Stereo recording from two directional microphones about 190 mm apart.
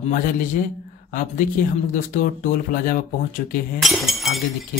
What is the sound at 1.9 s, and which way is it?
Speech, 45° left (ahead or behind).